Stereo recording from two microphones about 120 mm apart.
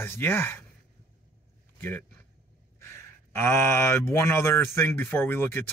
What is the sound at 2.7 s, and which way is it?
Speech, 20° left (ahead or behind).